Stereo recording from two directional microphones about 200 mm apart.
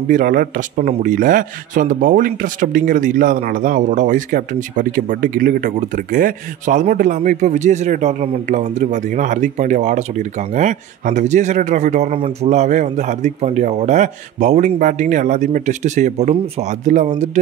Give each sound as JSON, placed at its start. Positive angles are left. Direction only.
{"t": 0.1, "sound": "speech", "side_deg": -45}